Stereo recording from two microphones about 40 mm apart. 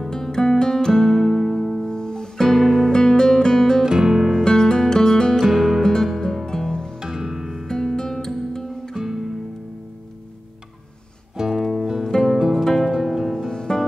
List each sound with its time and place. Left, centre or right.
0.1 s guitar: centre
1.0 s music: centre
1.9 s music: centre
2.4 s music: centre
2.9 s guitar: centre
3.8 s music: centre
4.5 s music: centre
5.4 s music: centre
5.8 s music: centre
7.0 s music: centre
7.6 s music: centre
8.9 s music: centre
11.3 s music: centre
13.5 s music: centre